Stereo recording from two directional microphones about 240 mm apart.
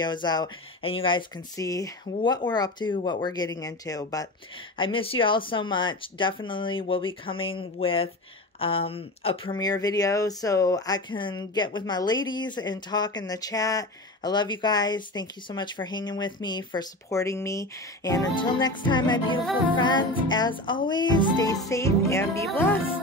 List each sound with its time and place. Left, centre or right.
0.0 s speech: centre